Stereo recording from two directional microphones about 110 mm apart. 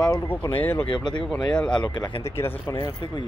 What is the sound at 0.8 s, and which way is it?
Speech, 45° left (ahead or behind).